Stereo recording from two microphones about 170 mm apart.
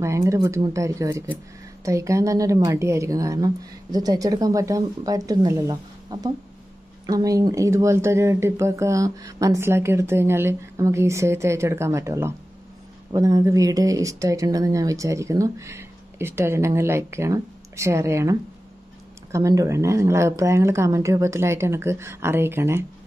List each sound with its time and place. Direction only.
0.0 s speech: 15° right (ahead or behind)